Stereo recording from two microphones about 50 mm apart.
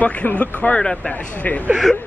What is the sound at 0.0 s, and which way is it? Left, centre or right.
Speech, left.